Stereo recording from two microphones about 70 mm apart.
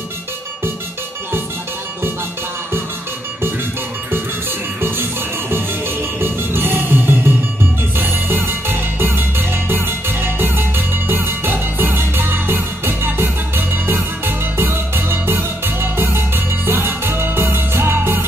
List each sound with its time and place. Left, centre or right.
6.2 s music: right